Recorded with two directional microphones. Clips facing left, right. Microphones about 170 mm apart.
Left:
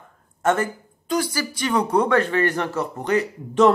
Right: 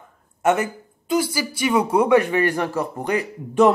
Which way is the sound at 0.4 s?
10° right (ahead or behind).